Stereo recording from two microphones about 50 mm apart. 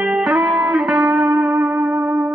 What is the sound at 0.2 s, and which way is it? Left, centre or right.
Music, centre.